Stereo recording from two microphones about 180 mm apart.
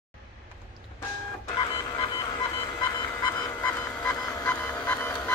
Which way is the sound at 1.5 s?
25° left (ahead or behind).